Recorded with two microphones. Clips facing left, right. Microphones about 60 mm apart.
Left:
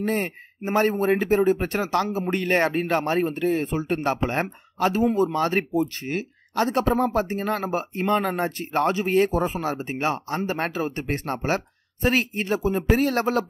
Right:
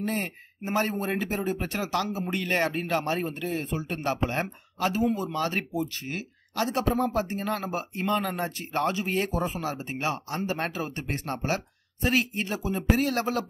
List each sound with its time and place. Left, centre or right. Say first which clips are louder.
0.0 s speech: left 5 dB; left